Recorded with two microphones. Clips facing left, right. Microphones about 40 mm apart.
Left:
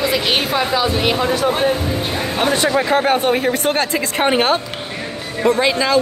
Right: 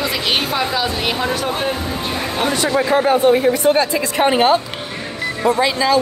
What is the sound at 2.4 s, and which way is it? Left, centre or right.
Speech, left.